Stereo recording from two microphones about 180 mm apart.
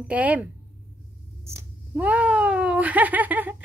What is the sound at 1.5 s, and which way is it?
Speech, 10° right (ahead or behind).